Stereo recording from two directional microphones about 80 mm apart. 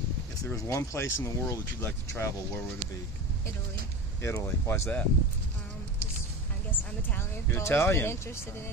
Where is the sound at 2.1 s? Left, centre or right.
Left.